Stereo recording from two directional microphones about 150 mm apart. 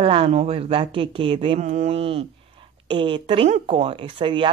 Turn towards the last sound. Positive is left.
turn(degrees=-35)  # may be behind; listen again after turning